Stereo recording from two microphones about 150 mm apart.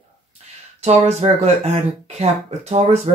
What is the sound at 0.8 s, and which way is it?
Speech, 45° right (ahead or behind).